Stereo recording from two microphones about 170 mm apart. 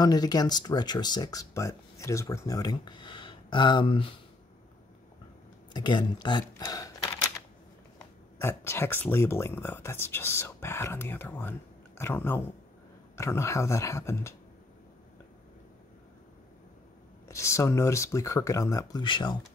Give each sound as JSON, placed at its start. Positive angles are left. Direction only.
{"t": 0.0, "sound": "speech", "side_deg": 25}
{"t": 5.7, "sound": "speech", "side_deg": 25}
{"t": 8.4, "sound": "speech", "side_deg": 15}
{"t": 17.3, "sound": "speech", "side_deg": 15}